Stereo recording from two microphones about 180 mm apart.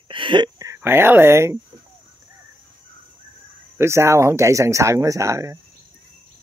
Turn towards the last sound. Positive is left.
turn(degrees=-15)  # may be behind; listen again after turning